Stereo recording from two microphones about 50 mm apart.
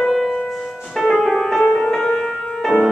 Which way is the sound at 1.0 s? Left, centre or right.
Centre.